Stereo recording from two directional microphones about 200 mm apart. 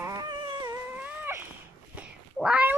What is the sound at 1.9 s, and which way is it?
Meow, 5° right (ahead or behind).